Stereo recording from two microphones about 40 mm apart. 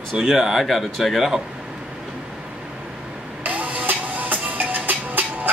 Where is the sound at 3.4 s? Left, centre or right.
Right.